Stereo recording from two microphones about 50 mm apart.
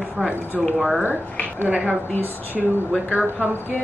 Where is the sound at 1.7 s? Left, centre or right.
Right.